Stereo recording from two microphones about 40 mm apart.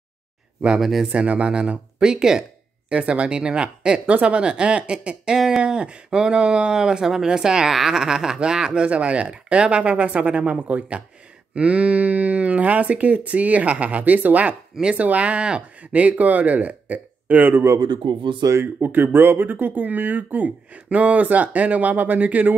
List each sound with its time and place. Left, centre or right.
0.7 s speech: centre
1.0 s speech: right; by 2.4 s centre
2.9 s speech: right
8.8 s speech: right
15.9 s speech: right
17.4 s speech: right